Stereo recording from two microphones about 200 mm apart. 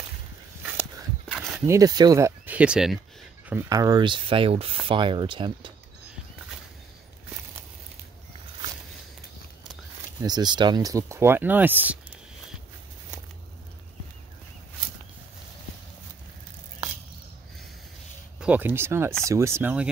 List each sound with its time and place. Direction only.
1.3 s a sound: centre (ahead or behind)
1.7 s speech: 20° right (ahead or behind)
3.4 s speech: 15° right (ahead or behind)
10.2 s speech: 20° right (ahead or behind)
18.4 s speech: 10° right (ahead or behind)